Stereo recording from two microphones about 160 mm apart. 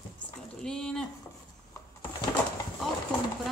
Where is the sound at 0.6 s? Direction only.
5° left (ahead or behind).